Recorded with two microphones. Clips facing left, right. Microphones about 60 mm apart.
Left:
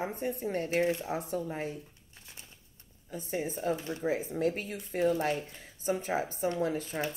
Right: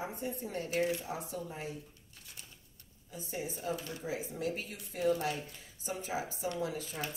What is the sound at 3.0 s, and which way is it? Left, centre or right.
Speech, left.